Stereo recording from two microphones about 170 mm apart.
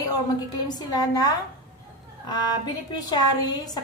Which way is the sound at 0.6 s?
25° left (ahead or behind).